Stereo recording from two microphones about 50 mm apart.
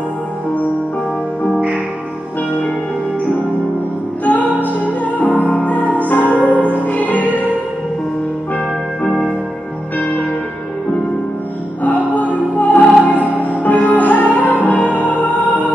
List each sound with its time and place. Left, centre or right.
4.2 s music: left
12.1 s music: left